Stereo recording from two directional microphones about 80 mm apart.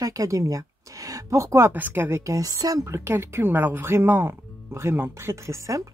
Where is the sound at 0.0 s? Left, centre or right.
Right.